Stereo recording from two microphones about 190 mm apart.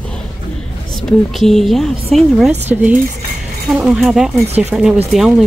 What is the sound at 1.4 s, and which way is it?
Speech, centre (ahead or behind).